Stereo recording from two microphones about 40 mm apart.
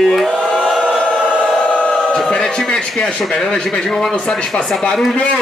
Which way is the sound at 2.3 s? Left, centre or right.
Centre.